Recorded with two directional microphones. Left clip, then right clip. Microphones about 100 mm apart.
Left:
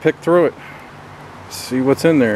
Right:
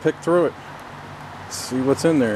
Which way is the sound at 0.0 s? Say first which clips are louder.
Left 5 dB; 15° left (ahead or behind).